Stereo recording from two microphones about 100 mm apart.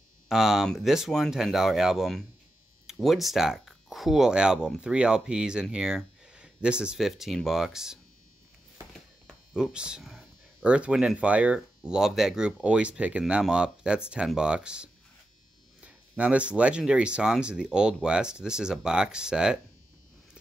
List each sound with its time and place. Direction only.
0.3 s speech: 5° right (ahead or behind)
9.5 s speech: 10° right (ahead or behind)